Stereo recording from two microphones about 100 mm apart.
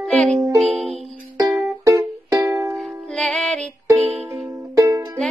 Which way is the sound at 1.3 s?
35° right (ahead or behind).